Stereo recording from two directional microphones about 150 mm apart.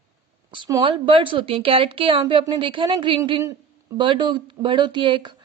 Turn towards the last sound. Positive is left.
turn(degrees=-30)  # may be behind; listen again after turning